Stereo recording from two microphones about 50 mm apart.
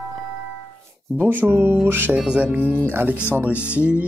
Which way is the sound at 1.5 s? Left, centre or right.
Right.